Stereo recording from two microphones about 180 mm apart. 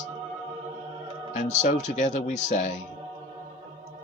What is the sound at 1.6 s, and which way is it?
Speech, 45° left (ahead or behind).